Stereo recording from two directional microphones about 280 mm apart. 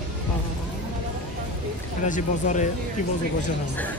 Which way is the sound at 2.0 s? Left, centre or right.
Left.